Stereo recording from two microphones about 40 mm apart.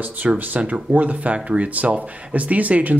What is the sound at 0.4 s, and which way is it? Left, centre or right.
Speech, right.